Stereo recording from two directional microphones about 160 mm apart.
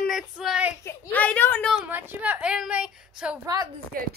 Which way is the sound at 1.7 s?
10° right (ahead or behind).